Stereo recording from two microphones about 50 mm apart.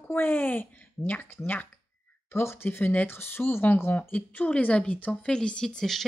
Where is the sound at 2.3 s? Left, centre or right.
Left.